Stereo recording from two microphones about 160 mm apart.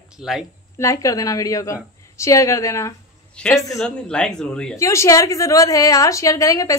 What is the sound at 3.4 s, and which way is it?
Speech, 5° left (ahead or behind).